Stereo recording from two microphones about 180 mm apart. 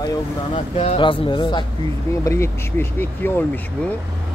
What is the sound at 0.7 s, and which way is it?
Speech, 30° left (ahead or behind).